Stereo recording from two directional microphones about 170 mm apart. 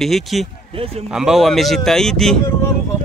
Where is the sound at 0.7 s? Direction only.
35° right (ahead or behind).